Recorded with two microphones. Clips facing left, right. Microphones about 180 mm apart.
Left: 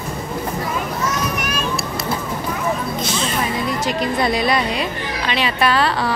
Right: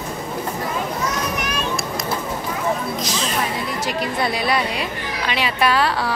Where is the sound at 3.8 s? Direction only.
10° right (ahead or behind).